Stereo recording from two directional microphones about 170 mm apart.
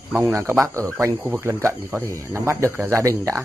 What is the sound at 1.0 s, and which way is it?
Speech, 15° right (ahead or behind).